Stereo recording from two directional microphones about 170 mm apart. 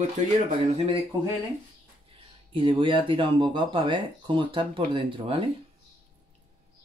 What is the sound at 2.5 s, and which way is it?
Speech, 30° right (ahead or behind).